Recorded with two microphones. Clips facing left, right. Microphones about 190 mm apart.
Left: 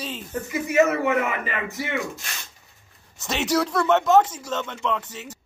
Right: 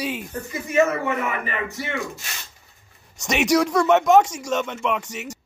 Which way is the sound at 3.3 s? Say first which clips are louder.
Right 4 dB; 15° right (ahead or behind).